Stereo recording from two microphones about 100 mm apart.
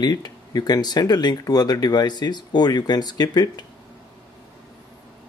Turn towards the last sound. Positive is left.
turn(degrees=40)  # may be behind; listen again after turning